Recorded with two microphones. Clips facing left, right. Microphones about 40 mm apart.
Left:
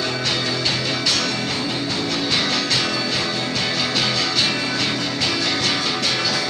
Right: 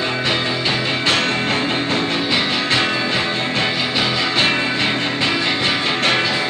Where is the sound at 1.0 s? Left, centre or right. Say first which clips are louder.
Right 4 dB; right.